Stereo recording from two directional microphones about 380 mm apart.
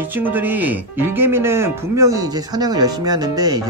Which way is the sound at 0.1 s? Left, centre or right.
Centre.